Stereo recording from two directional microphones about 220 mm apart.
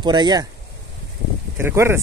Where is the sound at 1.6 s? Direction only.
10° right (ahead or behind).